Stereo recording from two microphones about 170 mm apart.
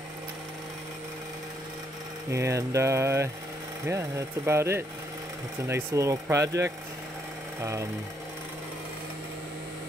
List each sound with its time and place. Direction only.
2.3 s speech: 15° right (ahead or behind)